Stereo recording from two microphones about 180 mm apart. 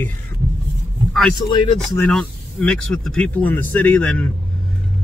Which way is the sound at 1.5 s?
25° left (ahead or behind).